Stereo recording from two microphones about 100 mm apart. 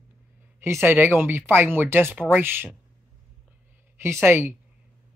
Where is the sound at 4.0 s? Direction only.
25° right (ahead or behind).